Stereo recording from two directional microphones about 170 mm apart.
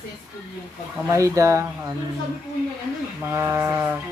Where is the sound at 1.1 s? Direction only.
20° right (ahead or behind).